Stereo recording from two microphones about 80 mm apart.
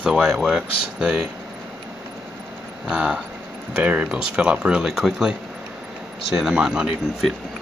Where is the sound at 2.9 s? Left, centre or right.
Centre.